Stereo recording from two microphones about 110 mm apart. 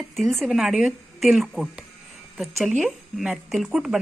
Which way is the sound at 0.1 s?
Centre (ahead or behind).